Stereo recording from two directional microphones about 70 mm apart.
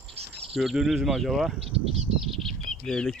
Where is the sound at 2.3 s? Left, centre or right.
Centre.